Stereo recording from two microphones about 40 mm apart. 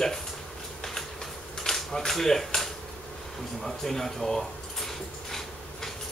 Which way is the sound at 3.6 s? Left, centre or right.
Centre.